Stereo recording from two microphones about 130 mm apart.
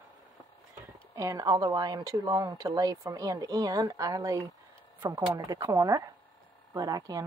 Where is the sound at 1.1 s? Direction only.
25° right (ahead or behind).